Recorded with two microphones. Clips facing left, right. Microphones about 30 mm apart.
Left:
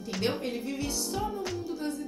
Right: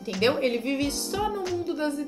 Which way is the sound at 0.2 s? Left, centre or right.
Right.